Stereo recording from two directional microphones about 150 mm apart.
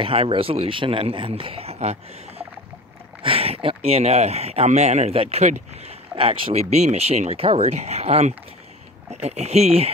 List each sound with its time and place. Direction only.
0.0 s speech: 35° right (ahead or behind)